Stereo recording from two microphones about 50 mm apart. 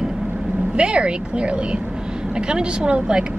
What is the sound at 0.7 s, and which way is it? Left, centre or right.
A woman's voice, right.